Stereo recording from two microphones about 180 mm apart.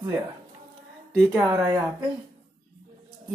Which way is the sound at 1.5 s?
25° right (ahead or behind).